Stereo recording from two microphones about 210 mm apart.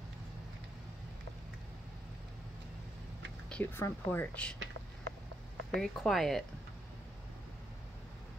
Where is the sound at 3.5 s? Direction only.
10° left (ahead or behind).